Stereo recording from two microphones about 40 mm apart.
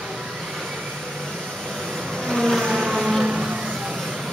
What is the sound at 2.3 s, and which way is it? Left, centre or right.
Vehicle, centre.